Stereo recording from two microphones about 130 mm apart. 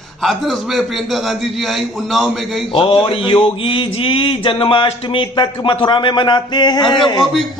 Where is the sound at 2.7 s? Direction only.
40° left (ahead or behind).